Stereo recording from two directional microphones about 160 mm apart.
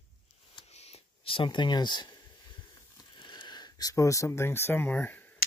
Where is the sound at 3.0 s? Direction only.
30° left (ahead or behind).